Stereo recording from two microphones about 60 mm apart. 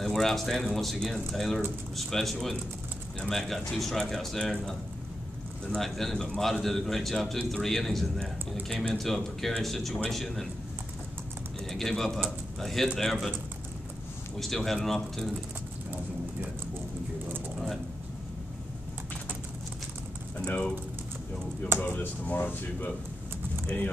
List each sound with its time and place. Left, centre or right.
0.0 s speech: centre
5.8 s speech: centre
11.7 s speech: centre
14.4 s speech: centre
20.3 s speech: left
21.7 s speech: left